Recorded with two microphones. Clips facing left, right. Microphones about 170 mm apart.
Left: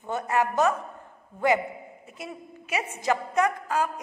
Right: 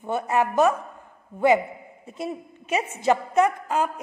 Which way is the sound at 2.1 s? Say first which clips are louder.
Right 8 dB; 25° right (ahead or behind).